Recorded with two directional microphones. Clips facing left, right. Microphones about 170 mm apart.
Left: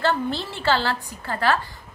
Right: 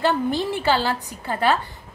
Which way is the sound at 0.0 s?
15° right (ahead or behind).